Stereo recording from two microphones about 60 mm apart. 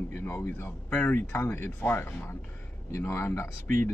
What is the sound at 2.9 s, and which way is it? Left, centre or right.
Speech, left.